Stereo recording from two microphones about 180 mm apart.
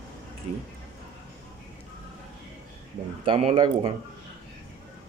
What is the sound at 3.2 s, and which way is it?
Speech, 30° right (ahead or behind).